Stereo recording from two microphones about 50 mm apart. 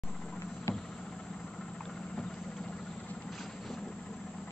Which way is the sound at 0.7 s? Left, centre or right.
Left.